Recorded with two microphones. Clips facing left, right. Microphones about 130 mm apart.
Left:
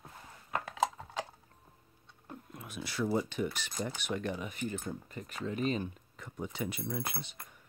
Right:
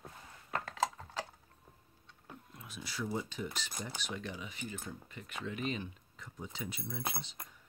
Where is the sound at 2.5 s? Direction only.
60° left (ahead or behind); by 5.9 s 40° left (ahead or behind).